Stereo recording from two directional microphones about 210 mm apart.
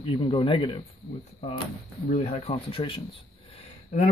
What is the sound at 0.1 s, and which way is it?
Speech, 25° left (ahead or behind).